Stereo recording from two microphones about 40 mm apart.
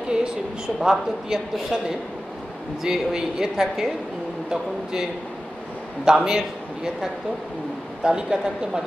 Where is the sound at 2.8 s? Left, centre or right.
Centre.